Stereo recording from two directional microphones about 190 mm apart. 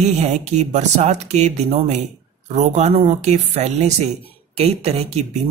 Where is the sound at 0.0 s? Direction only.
35° right (ahead or behind).